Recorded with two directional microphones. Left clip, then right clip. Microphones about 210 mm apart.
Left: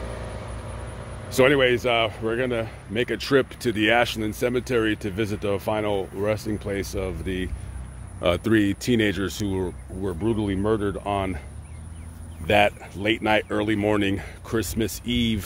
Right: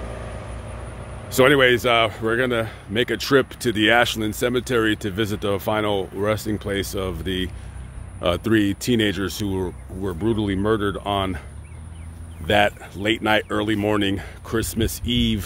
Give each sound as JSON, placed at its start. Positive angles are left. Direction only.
{"t": 0.0, "sound": "vehicle", "side_deg": 15}
{"t": 1.3, "sound": "speech", "side_deg": -15}
{"t": 8.2, "sound": "speech", "side_deg": 0}
{"t": 12.4, "sound": "speech", "side_deg": -5}